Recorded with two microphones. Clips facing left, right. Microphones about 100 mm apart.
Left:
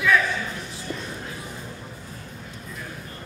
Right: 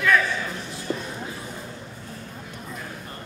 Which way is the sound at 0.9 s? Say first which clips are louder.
Right 5 dB; 30° right (ahead or behind).